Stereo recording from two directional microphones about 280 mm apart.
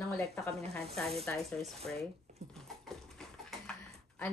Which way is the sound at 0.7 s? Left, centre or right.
Centre.